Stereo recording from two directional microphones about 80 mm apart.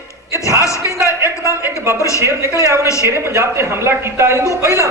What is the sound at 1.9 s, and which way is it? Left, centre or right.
Speech, left.